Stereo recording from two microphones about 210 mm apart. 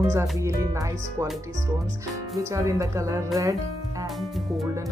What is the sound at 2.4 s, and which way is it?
Speech, 15° right (ahead or behind).